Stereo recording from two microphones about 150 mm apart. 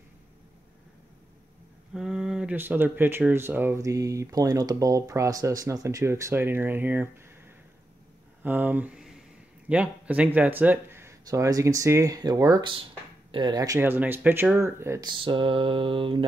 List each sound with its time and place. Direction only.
2.0 s speech: 5° right (ahead or behind)
8.4 s speech: 10° right (ahead or behind)
15.0 s mantra: 35° right (ahead or behind)